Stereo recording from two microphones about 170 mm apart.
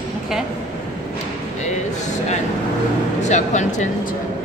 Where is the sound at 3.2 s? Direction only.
45° left (ahead or behind).